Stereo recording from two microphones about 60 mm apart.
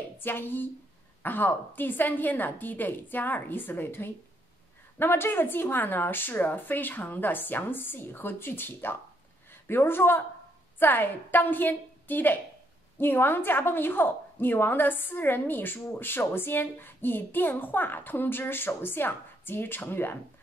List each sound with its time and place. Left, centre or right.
0.2 s a woman's voice: left